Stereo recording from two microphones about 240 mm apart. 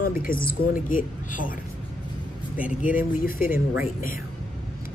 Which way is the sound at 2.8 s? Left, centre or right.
Left.